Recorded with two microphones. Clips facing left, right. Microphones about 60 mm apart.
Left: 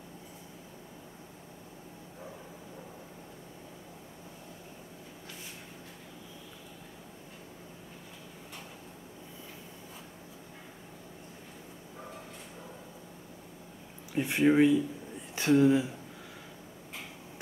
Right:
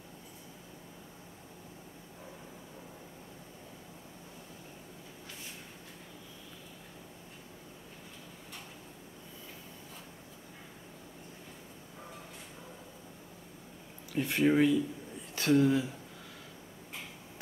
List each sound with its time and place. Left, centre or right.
14.1 s speech: left